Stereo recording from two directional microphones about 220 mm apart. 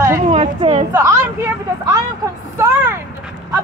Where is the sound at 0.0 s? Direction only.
20° right (ahead or behind).